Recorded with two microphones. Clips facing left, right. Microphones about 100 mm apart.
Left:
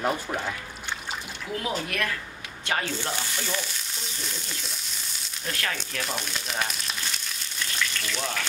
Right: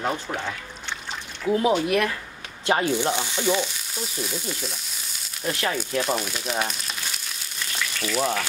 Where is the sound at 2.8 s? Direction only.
15° right (ahead or behind).